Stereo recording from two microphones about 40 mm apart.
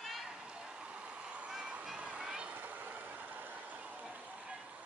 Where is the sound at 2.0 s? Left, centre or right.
Right.